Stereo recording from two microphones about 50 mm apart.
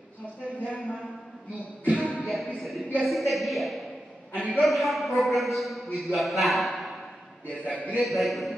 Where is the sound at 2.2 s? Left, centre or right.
Centre.